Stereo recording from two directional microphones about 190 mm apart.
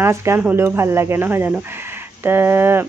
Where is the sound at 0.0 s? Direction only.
15° right (ahead or behind).